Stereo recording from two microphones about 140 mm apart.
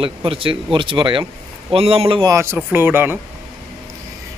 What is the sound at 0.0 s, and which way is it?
Speech, 40° right (ahead or behind).